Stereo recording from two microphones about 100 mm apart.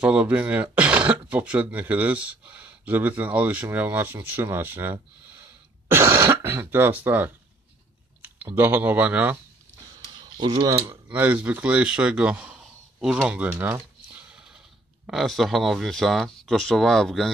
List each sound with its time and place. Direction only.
0.0 s speech: 10° right (ahead or behind)
5.9 s throat clearing: 25° right (ahead or behind)
6.1 s speech: 25° right (ahead or behind)
8.5 s speech: 20° right (ahead or behind)
10.8 s speech: 20° right (ahead or behind)
15.0 s speech: centre (ahead or behind)